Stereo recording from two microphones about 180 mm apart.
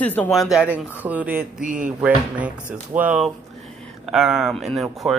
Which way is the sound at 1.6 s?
45° right (ahead or behind).